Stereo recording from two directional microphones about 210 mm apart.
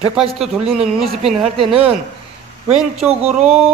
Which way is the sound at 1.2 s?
Centre (ahead or behind).